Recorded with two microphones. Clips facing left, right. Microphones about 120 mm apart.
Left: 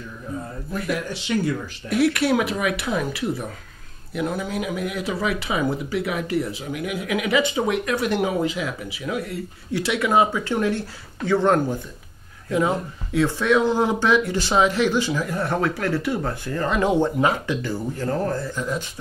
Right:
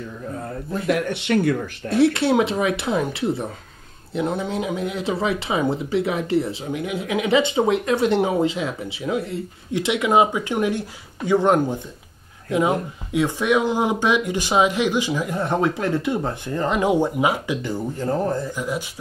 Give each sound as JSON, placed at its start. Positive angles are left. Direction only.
{"t": 0.8, "sound": "speech", "side_deg": -60}
{"t": 1.9, "sound": "speech", "side_deg": -25}